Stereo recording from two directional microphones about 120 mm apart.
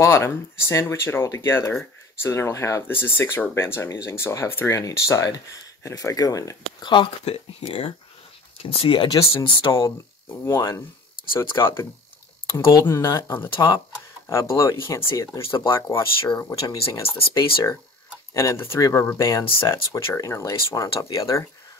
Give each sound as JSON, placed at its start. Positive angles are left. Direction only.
{"t": 0.0, "sound": "speech", "side_deg": 25}
{"t": 7.2, "sound": "speech", "side_deg": 55}
{"t": 9.8, "sound": "speech", "side_deg": 25}